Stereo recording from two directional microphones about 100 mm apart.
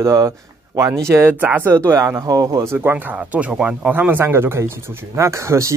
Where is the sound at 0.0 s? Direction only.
30° right (ahead or behind).